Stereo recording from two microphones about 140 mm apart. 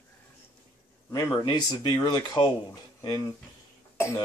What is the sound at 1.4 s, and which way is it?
Speech, 35° left (ahead or behind).